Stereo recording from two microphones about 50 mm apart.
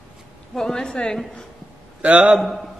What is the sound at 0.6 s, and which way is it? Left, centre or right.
Speech, centre.